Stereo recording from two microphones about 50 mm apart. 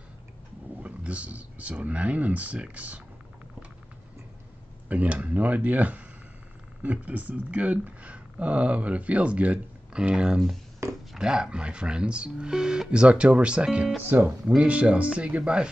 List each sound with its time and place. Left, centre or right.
0.7 s speech: right
4.8 s speech: right
10.8 s a sound: right
11.1 s speech: centre
14.0 s speech: right
14.7 s speech: right